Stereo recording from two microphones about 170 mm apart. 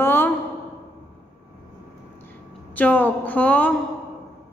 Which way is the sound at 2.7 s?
10° left (ahead or behind).